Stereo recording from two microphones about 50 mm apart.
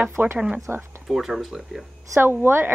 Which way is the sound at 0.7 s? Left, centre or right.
Right.